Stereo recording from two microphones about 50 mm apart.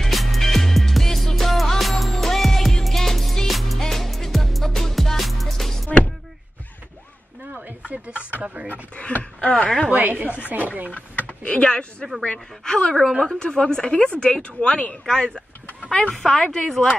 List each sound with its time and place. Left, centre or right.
0.0 s music: centre
7.5 s a sound: right
9.2 s speech: left
9.8 s a woman's voice: right
10.9 s speech: left; by 16.8 s centre